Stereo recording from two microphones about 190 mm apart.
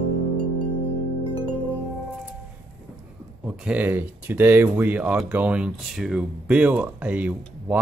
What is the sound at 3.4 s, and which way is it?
Speech, 5° right (ahead or behind).